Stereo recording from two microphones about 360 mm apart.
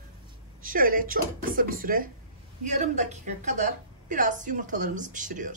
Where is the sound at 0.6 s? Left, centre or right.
Right.